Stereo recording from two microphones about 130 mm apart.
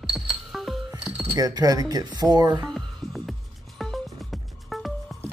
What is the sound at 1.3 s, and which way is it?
Speech, 30° right (ahead or behind).